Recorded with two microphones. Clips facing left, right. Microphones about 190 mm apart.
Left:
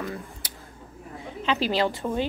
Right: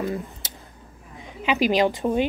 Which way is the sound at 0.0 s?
25° right (ahead or behind).